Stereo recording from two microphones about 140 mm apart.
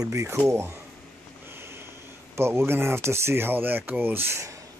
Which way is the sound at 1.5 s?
15° right (ahead or behind).